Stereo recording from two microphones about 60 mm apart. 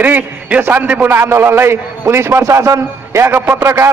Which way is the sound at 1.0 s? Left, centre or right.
Right.